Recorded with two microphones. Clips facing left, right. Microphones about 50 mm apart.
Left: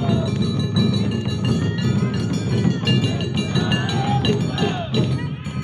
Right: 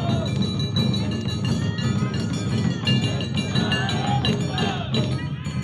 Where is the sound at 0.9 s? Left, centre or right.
Centre.